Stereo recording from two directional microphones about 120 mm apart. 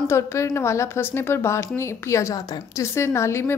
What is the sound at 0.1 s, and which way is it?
A woman's voice, 25° left (ahead or behind).